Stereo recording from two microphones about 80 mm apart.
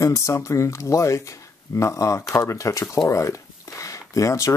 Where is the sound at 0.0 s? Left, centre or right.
Left.